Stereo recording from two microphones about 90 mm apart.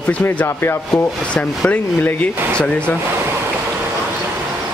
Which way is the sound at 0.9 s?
5° left (ahead or behind).